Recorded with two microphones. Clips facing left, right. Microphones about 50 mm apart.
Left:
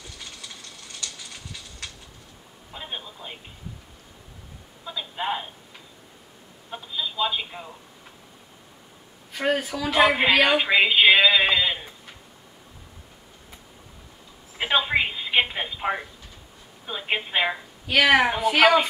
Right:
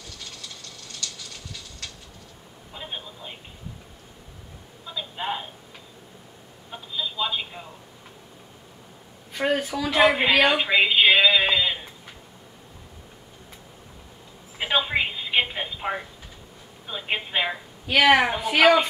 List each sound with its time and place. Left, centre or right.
0.0 s a sound: centre
2.7 s telephone: centre
4.8 s a sound: centre
6.7 s telephone: centre
9.3 s a woman's voice: centre
14.6 s telephone: centre
16.8 s a woman's voice: centre